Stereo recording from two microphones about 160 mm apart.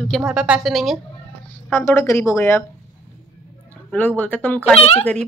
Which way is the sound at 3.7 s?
10° left (ahead or behind).